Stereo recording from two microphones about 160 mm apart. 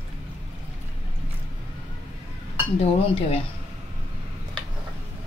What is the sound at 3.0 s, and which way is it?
Speech, 40° left (ahead or behind).